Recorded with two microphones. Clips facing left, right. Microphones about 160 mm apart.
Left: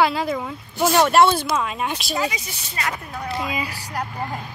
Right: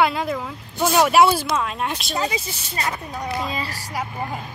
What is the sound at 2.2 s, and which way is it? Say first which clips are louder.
Speech: right 3 dB; 30° right (ahead or behind).